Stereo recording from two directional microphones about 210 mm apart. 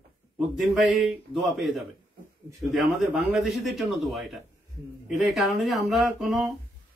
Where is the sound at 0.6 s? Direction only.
Centre (ahead or behind).